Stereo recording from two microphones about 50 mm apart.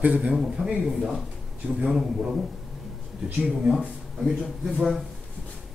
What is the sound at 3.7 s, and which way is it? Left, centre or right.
Speech, centre.